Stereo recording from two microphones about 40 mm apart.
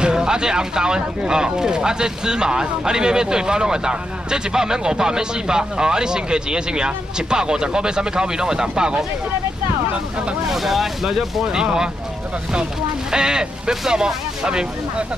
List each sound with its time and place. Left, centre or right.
0.0 s speech: centre
10.5 s speech: centre
13.1 s speech: centre